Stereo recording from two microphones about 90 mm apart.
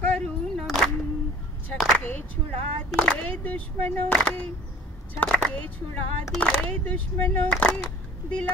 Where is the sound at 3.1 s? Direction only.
15° left (ahead or behind).